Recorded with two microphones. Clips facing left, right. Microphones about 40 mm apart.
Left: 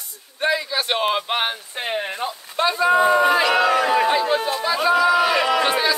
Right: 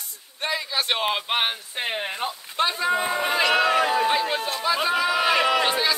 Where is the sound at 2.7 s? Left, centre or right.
Centre.